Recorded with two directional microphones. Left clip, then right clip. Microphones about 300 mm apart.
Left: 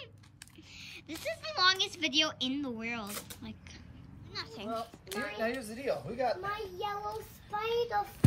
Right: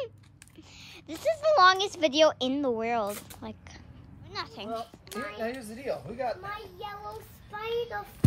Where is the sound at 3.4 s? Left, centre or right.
Centre.